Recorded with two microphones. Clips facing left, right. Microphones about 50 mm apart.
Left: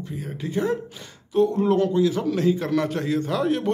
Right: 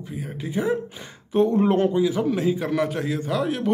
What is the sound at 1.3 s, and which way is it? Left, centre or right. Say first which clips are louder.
Speech: right 1 dB; right.